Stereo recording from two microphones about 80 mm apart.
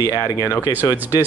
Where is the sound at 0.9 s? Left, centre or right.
Right.